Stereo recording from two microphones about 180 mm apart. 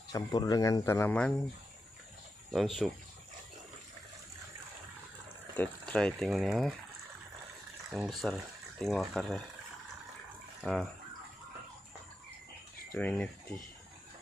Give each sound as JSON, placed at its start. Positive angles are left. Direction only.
{"t": 0.1, "sound": "speech", "side_deg": 20}
{"t": 2.5, "sound": "speech", "side_deg": 0}
{"t": 5.6, "sound": "speech", "side_deg": 5}
{"t": 7.9, "sound": "speech", "side_deg": 0}
{"t": 10.6, "sound": "speech", "side_deg": 0}
{"t": 12.9, "sound": "speech", "side_deg": 5}